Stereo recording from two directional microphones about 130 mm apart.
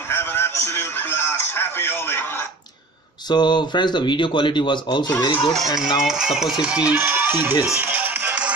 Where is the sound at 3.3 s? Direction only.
35° left (ahead or behind).